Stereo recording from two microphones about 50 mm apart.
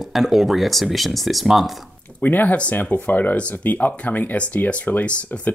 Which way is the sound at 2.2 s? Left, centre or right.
Left.